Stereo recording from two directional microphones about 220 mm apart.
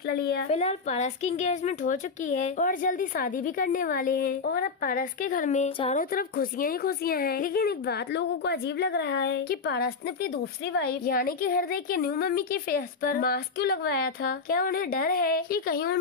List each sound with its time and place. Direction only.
0.1 s a woman's voice: 45° left (ahead or behind)
0.5 s a woman's voice: 30° left (ahead or behind)
6.1 s a woman's voice: 40° left (ahead or behind)